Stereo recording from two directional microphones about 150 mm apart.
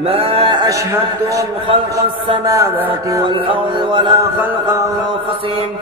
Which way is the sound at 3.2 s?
35° right (ahead or behind).